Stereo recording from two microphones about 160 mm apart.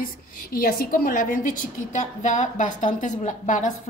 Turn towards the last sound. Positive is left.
turn(degrees=50)  # may be behind; listen again after turning